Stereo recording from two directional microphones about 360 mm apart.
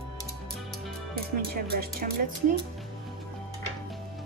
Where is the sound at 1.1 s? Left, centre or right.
Right.